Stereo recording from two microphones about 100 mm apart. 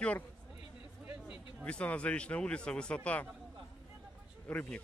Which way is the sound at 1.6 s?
15° left (ahead or behind).